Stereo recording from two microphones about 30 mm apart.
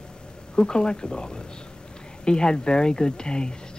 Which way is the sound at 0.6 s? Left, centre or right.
Left.